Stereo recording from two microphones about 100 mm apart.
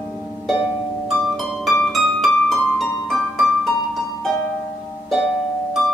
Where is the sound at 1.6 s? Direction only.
Centre (ahead or behind).